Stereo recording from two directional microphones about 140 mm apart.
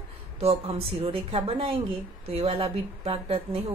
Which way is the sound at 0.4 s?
45° right (ahead or behind).